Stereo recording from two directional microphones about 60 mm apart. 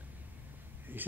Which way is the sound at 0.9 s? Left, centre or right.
Right.